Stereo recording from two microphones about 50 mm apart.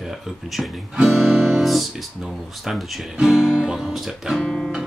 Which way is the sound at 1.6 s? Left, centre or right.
Centre.